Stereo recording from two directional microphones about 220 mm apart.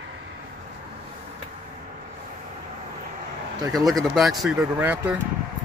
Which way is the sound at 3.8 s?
Centre (ahead or behind).